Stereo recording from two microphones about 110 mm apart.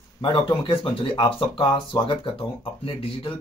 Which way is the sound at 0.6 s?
55° left (ahead or behind).